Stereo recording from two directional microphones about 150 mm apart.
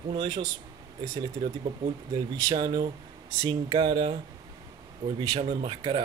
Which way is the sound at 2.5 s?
30° right (ahead or behind).